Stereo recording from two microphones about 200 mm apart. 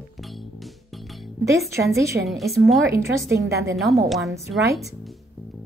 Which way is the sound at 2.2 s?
Centre (ahead or behind).